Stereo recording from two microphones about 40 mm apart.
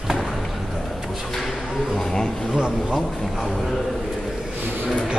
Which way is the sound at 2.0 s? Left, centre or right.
Centre.